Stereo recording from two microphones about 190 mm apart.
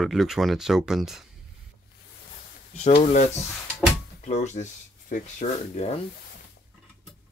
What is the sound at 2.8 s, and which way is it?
Speech, 40° left (ahead or behind).